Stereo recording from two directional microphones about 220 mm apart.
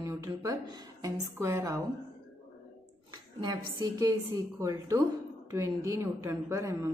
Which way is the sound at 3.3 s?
15° right (ahead or behind).